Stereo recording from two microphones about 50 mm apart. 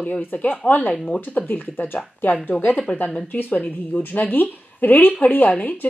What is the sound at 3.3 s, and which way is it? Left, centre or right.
A woman's voice, left.